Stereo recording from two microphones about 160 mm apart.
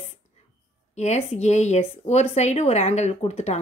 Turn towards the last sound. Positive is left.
turn(degrees=40)  # may be behind; listen again after turning